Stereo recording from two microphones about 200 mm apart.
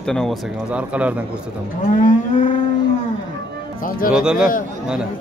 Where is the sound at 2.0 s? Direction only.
40° left (ahead or behind).